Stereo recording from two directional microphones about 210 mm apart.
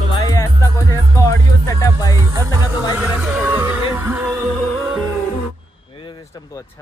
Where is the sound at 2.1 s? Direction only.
15° right (ahead or behind).